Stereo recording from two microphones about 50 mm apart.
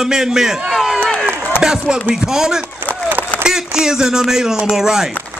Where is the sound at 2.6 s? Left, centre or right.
Right.